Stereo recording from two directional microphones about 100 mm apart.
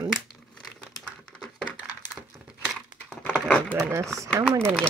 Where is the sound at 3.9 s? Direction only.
30° right (ahead or behind).